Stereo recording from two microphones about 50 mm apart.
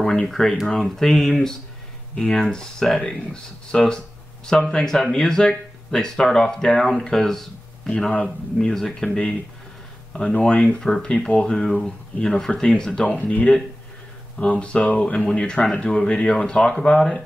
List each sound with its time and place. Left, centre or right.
0.0 s speech: centre
8.5 s speech: centre
10.3 s speech: left
10.8 s speech: centre
13.0 s speech: left; by 17.2 s centre